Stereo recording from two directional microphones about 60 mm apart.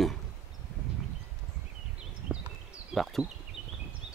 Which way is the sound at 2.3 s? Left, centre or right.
Right.